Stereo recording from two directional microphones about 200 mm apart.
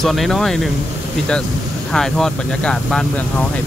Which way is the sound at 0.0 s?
Centre (ahead or behind).